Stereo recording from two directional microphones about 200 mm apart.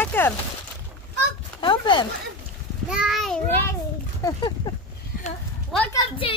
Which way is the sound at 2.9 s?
5° right (ahead or behind).